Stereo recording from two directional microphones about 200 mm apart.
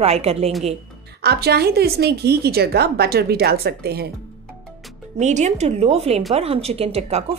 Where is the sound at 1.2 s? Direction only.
55° right (ahead or behind).